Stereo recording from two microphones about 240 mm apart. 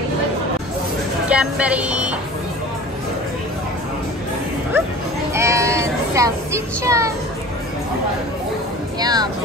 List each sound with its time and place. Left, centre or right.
1.3 s speech: centre
5.3 s a sound: centre
9.0 s speech: centre